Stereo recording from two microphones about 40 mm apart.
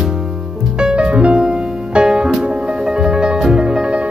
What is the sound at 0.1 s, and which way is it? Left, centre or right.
Music, centre.